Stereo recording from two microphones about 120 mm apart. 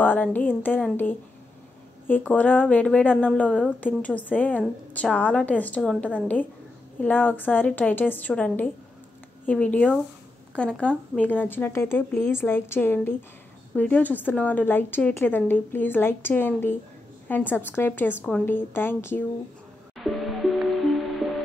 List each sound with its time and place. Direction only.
0.0 s speech: 15° left (ahead or behind)
2.0 s speech: 15° left (ahead or behind)
7.0 s speech: 15° left (ahead or behind)
20.0 s music: centre (ahead or behind)